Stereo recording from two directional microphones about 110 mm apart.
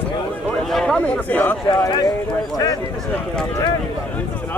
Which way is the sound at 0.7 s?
5° left (ahead or behind).